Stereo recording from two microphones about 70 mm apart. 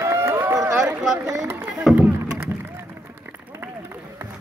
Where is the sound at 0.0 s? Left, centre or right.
Right.